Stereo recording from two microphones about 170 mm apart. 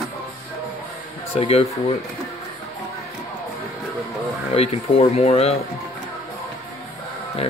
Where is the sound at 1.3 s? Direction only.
35° left (ahead or behind).